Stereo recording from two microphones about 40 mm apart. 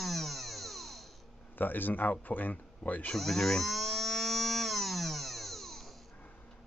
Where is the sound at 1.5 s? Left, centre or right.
Left.